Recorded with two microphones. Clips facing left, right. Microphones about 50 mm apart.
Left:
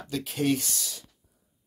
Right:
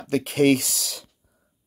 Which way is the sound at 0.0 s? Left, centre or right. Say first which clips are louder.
Right 9 dB; right.